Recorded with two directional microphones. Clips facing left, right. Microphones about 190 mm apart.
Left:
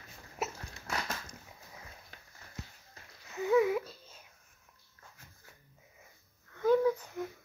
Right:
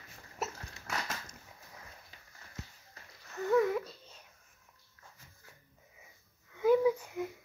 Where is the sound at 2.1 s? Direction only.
65° left (ahead or behind).